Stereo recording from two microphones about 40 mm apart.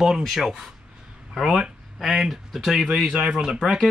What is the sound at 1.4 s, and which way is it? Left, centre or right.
Speech, right.